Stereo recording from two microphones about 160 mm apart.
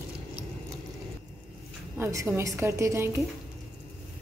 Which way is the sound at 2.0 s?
15° right (ahead or behind).